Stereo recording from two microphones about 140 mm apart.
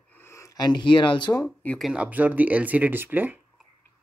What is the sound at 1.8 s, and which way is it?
Speech, 10° right (ahead or behind).